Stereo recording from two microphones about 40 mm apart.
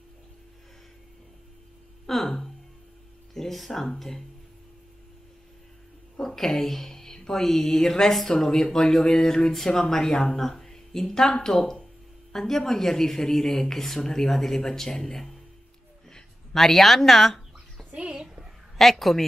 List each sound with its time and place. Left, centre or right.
2.0 s a sound: centre
3.3 s speech: centre
6.1 s speech: centre
16.5 s speech: centre
18.0 s a sound: centre
18.8 s speech: centre